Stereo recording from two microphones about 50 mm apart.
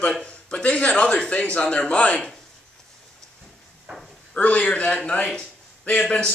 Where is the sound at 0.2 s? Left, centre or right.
Left.